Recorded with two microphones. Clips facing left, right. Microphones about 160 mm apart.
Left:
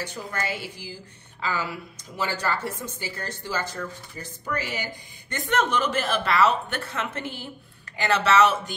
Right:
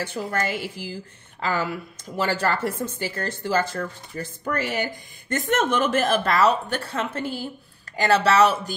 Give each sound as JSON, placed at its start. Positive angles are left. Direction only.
{"t": 0.0, "sound": "a woman's voice", "side_deg": -55}